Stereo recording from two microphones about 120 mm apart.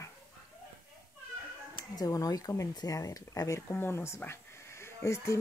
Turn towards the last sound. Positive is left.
turn(degrees=25)  # may be behind; listen again after turning